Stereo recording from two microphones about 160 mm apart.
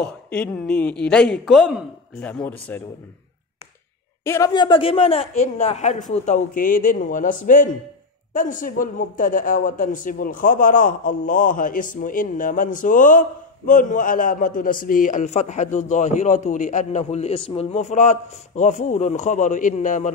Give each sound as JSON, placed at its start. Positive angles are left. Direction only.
{"t": 0.0, "sound": "a woman's voice", "side_deg": 5}
{"t": 2.2, "sound": "speech", "side_deg": 10}
{"t": 4.2, "sound": "a man's voice", "side_deg": 15}
{"t": 4.6, "sound": "a man's voice", "side_deg": 30}